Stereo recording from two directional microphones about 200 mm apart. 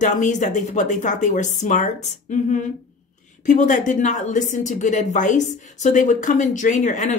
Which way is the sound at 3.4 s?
40° left (ahead or behind).